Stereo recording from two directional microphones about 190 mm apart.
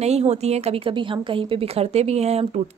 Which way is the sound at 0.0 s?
35° right (ahead or behind).